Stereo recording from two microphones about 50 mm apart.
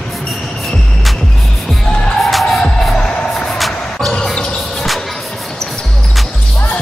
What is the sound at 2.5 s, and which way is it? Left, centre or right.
Music, centre.